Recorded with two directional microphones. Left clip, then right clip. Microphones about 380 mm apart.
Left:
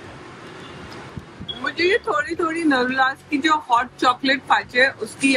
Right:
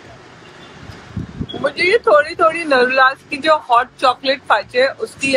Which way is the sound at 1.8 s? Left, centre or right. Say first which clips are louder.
Right 8 dB; right.